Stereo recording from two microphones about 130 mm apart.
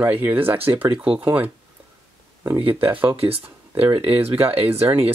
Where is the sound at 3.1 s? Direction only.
45° right (ahead or behind).